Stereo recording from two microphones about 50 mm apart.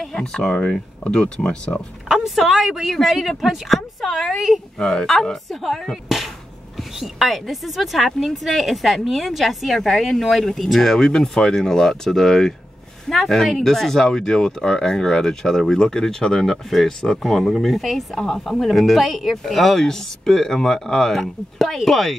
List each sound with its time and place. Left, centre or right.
0.0 s speech: centre
2.0 s a woman's voice: centre
4.7 s speech: centre
6.0 s a sound: centre
6.8 s a woman's voice: centre
17.2 s a woman's voice: centre